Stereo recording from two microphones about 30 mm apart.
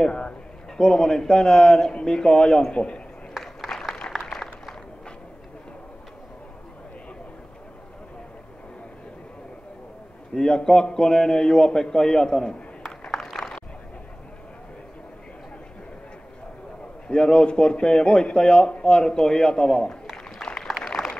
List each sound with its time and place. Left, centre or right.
0.7 s a man's voice: left
2.7 s speech: left
3.7 s applause: left
4.3 s a sound: centre
10.3 s a man's voice: left
17.1 s a man's voice: left
20.7 s a sound: centre